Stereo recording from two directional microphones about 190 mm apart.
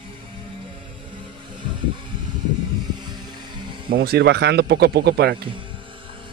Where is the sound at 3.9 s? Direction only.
55° right (ahead or behind).